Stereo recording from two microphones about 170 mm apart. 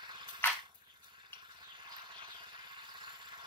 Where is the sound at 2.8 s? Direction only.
25° right (ahead or behind).